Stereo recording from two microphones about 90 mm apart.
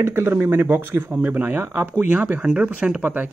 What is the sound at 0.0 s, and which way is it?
Speech, 30° right (ahead or behind).